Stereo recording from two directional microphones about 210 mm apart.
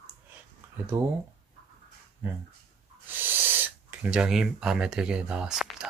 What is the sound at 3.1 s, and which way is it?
Speech, 10° right (ahead or behind).